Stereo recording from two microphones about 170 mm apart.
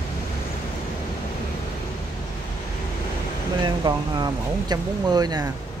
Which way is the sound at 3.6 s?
25° right (ahead or behind).